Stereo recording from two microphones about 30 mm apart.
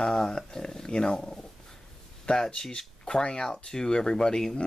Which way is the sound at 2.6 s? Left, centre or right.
Left.